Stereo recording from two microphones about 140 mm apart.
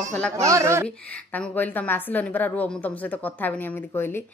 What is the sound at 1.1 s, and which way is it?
A woman's voice, 10° left (ahead or behind).